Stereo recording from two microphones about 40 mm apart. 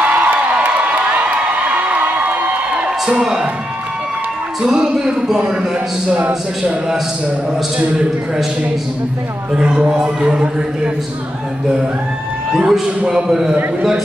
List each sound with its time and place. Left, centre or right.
0.0 s a sound: right
0.7 s crowd: right
3.2 s a man's voice: centre
4.6 s speech: centre
9.5 s speech: right
12.5 s a man's voice: centre